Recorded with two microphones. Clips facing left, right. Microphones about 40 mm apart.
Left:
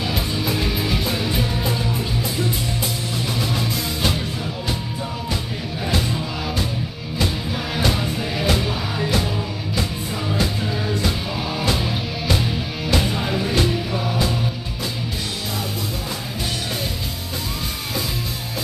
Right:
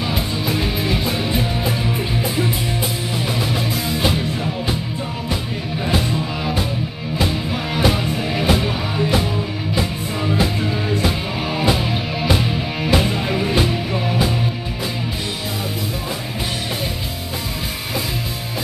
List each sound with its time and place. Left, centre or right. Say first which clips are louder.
0.0 s music: right 1 dB; centre
5.9 s music: right 3 dB; centre
10.3 s music: right 3 dB; centre